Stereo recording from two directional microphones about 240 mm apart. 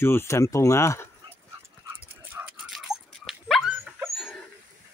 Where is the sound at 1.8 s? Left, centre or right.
Centre.